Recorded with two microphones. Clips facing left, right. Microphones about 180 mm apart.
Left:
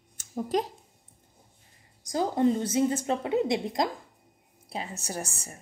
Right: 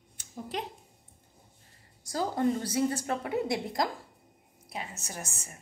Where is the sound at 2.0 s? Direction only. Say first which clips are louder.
Left 4 dB; 20° left (ahead or behind).